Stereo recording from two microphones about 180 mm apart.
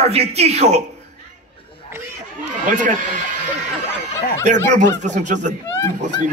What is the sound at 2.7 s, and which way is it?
Speech, 45° right (ahead or behind).